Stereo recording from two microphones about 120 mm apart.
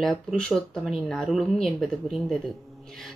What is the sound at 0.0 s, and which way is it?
Speech, centre (ahead or behind).